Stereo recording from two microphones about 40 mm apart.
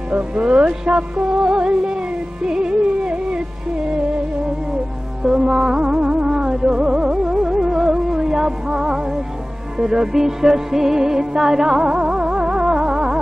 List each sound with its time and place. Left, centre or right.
0.1 s music: right
5.2 s music: centre